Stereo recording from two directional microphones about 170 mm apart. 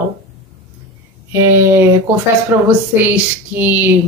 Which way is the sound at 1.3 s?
15° right (ahead or behind).